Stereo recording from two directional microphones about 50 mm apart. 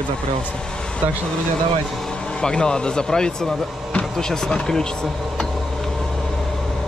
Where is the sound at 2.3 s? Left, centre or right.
Centre.